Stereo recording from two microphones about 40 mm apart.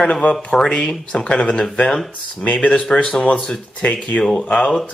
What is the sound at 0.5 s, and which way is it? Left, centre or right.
Speech, centre.